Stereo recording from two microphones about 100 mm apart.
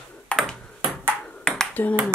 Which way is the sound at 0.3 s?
10° left (ahead or behind).